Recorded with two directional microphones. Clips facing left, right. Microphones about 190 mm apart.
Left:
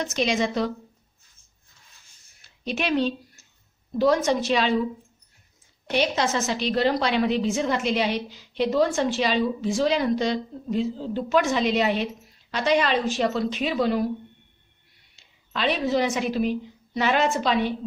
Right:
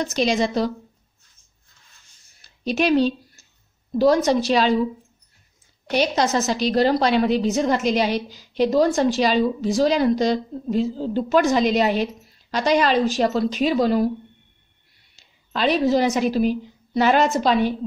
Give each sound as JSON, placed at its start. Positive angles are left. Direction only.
{"t": 0.0, "sound": "a woman's voice", "side_deg": -35}
{"t": 2.4, "sound": "a sound", "side_deg": -35}
{"t": 4.0, "sound": "a woman's voice", "side_deg": -35}
{"t": 5.9, "sound": "a woman's voice", "side_deg": -40}
{"t": 15.1, "sound": "a woman's voice", "side_deg": -40}